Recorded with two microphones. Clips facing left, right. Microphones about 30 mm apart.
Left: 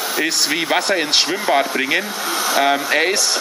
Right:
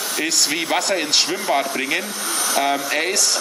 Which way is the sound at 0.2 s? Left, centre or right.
Centre.